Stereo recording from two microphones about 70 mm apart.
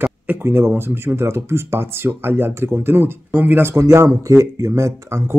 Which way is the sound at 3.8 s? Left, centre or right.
Right.